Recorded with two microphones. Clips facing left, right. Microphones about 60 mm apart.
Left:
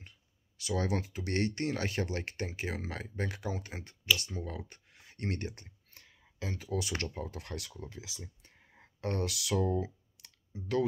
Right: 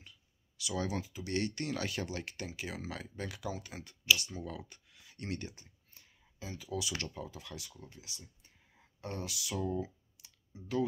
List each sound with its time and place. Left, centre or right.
0.0 s clicking: left
1.4 s speech: left
8.7 s clicking: left